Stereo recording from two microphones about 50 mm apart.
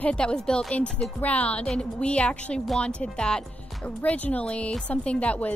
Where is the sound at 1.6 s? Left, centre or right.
Centre.